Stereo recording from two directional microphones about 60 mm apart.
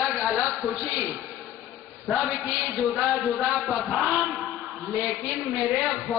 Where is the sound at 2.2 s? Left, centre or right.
Centre.